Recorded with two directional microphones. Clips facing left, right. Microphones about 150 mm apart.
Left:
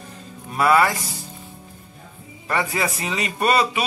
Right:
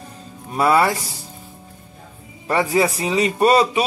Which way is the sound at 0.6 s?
30° right (ahead or behind).